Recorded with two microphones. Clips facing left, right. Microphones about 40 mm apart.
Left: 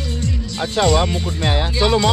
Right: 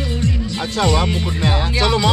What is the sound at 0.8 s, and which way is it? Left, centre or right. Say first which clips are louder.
Speech: left 2 dB; centre.